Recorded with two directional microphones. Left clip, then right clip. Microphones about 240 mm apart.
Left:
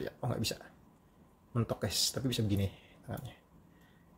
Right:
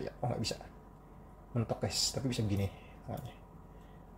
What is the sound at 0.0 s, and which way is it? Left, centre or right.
Speech, left.